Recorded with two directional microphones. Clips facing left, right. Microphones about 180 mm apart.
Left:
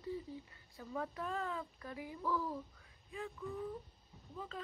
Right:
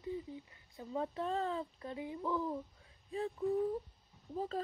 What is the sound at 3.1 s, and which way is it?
Speech, 35° right (ahead or behind).